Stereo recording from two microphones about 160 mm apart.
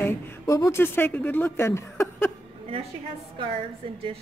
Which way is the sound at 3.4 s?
35° right (ahead or behind).